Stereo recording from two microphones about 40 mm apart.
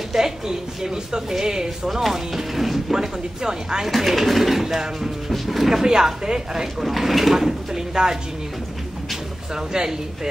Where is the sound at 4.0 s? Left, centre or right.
Centre.